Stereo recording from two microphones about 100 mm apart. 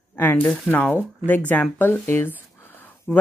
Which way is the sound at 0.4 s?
10° left (ahead or behind).